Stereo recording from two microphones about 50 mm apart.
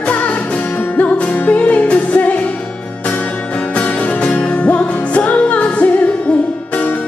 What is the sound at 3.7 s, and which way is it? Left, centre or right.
Music, left.